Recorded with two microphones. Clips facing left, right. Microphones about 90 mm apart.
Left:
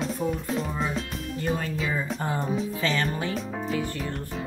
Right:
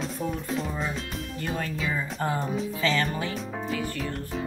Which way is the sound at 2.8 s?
20° left (ahead or behind).